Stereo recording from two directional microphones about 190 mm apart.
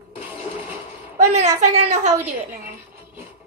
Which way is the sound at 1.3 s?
40° right (ahead or behind).